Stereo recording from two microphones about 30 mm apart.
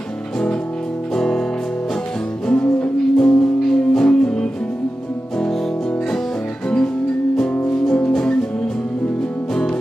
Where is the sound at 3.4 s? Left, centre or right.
Left.